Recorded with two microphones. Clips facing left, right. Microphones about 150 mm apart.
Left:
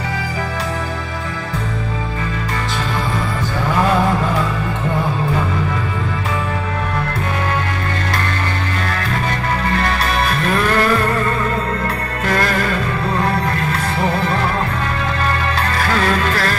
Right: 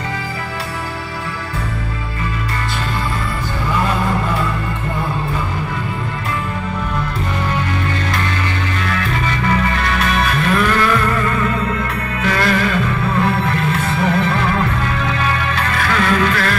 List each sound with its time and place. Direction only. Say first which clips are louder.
9.8 s music: even; 35° left (ahead or behind)
15.9 s music: right 2 dB; 35° left (ahead or behind)